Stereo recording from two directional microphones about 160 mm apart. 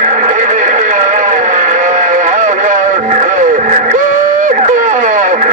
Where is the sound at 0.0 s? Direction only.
50° right (ahead or behind).